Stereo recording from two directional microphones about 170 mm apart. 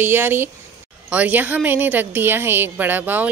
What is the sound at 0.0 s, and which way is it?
Speech, 10° right (ahead or behind).